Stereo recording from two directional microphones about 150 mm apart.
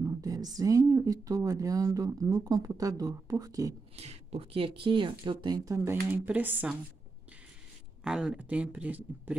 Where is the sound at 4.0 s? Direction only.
45° right (ahead or behind); by 6.8 s 10° right (ahead or behind).